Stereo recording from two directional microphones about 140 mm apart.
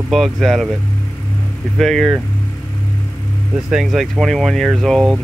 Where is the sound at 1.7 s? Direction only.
Centre (ahead or behind).